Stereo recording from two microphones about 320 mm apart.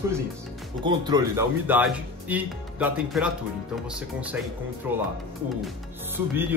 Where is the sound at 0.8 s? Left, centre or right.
Centre.